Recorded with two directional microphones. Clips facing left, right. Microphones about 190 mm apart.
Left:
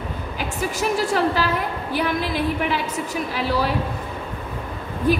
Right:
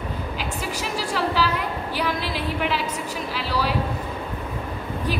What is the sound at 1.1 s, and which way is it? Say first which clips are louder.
A woman's voice: left 3 dB; 50° left (ahead or behind).